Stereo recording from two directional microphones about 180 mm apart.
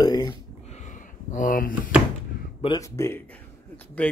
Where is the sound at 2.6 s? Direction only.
20° left (ahead or behind).